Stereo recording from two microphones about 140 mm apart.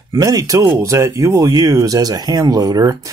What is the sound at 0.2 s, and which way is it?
Speech, 25° right (ahead or behind).